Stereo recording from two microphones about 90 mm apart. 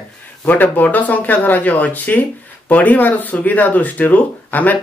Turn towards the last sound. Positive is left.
turn(degrees=20)  # may be behind; listen again after turning